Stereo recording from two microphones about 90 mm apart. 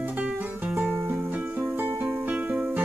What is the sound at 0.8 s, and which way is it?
Music, 20° right (ahead or behind).